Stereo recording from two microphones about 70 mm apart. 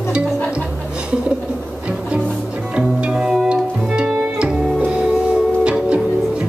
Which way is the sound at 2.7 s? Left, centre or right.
Centre.